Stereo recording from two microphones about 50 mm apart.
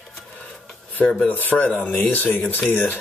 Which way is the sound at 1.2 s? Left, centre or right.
Left.